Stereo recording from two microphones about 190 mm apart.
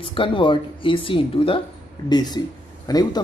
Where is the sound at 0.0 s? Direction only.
25° left (ahead or behind).